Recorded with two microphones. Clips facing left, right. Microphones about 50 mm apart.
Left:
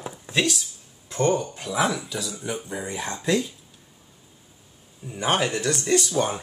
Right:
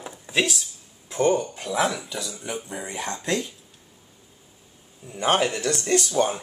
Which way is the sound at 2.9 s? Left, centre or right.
Right.